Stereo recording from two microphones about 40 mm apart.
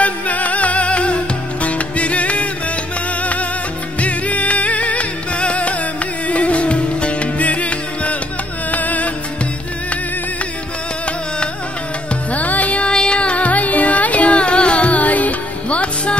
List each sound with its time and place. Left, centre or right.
0.0 s music: left
4.0 s music: left
12.3 s music: left
12.9 s music: left